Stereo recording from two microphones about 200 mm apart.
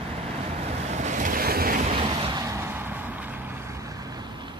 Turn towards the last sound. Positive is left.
turn(degrees=-10)  # may be behind; listen again after turning